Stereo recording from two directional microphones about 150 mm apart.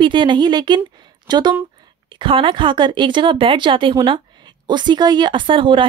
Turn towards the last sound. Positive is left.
turn(degrees=-35)  # may be behind; listen again after turning